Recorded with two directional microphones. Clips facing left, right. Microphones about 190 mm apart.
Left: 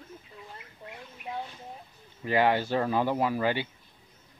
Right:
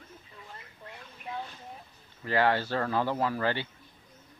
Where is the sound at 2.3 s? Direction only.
15° left (ahead or behind).